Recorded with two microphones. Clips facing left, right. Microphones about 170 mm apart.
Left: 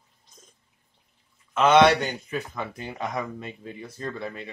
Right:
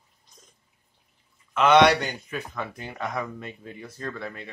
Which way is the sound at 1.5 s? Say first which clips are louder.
Even; 25° left (ahead or behind).